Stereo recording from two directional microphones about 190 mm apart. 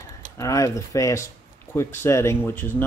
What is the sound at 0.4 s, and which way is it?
Speech, 15° left (ahead or behind).